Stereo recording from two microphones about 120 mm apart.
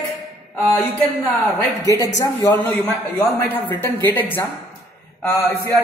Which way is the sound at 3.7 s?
15° left (ahead or behind).